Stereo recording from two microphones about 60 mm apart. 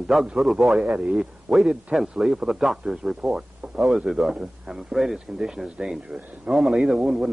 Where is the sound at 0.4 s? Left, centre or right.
Centre.